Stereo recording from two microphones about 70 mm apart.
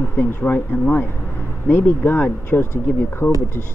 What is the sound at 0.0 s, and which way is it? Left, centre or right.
Speech, left.